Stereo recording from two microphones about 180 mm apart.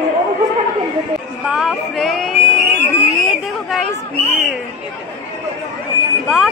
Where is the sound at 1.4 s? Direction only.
5° right (ahead or behind).